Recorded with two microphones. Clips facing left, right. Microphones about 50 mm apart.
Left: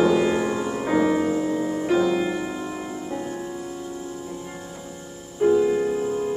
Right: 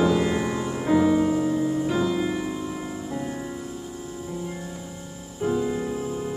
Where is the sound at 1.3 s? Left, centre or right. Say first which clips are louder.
Right 1 dB; left.